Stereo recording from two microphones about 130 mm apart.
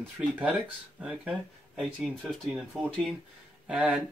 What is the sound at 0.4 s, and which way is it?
Speech, 10° right (ahead or behind).